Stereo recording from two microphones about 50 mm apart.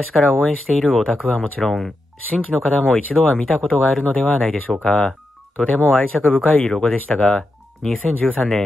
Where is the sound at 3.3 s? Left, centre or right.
Centre.